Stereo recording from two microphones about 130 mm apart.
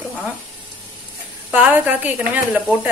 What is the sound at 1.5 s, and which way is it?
Speech, 10° right (ahead or behind).